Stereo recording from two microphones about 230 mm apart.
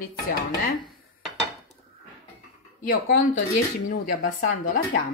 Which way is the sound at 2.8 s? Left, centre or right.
Left.